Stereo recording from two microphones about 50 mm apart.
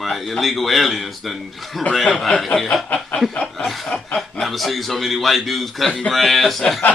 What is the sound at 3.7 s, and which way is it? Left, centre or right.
A man's voice, centre.